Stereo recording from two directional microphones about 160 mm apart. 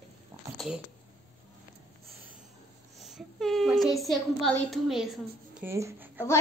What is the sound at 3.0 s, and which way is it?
Speech, centre (ahead or behind).